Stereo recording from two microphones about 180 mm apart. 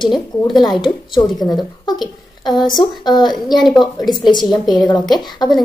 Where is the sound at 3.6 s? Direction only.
Centre (ahead or behind).